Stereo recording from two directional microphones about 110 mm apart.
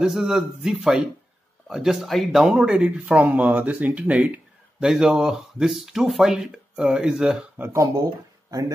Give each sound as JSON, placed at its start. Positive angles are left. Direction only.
{"t": 0.0, "sound": "speech", "side_deg": -5}
{"t": 7.5, "sound": "speech", "side_deg": -25}